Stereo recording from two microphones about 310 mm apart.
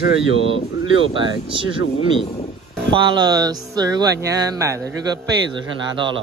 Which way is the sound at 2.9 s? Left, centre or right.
Centre.